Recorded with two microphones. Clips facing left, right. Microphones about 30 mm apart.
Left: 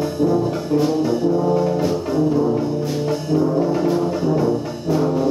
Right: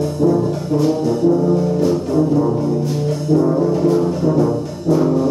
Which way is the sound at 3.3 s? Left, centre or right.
Centre.